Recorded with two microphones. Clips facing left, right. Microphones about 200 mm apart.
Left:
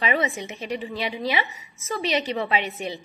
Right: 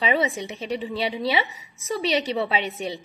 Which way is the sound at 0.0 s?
35° right (ahead or behind).